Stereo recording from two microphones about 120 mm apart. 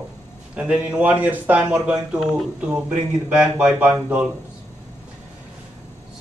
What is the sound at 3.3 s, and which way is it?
Speech, 10° right (ahead or behind).